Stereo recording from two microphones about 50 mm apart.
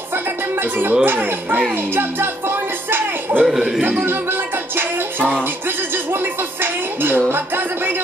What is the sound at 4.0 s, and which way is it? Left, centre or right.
Music, right.